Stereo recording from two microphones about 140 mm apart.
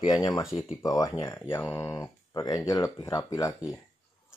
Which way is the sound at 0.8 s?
25° left (ahead or behind).